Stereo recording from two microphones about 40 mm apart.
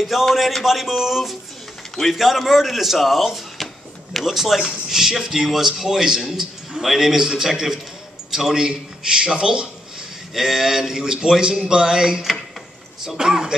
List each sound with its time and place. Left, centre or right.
0.1 s speech: centre